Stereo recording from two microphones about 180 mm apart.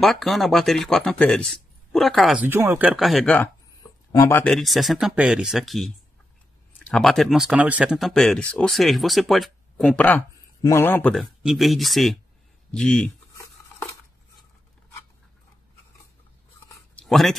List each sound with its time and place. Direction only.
0.0 s speech: centre (ahead or behind)
2.4 s speech: 15° right (ahead or behind); by 3.4 s 5° left (ahead or behind)
4.1 s speech: 15° left (ahead or behind)
4.5 s speech: centre (ahead or behind)
6.9 s speech: centre (ahead or behind)
17.0 s speech: centre (ahead or behind)